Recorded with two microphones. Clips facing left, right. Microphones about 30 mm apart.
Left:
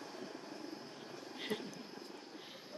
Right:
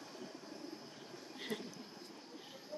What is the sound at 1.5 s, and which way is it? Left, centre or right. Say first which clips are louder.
Speech: left 2 dB; left.